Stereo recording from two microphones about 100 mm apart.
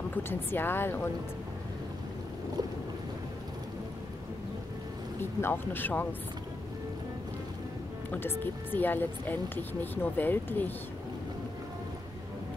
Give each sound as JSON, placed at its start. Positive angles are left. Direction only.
{"t": 0.1, "sound": "speech", "side_deg": 20}
{"t": 5.2, "sound": "speech", "side_deg": 20}
{"t": 8.1, "sound": "speech", "side_deg": 20}